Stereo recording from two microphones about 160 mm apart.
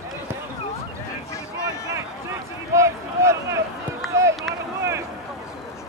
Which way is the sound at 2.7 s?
20° right (ahead or behind).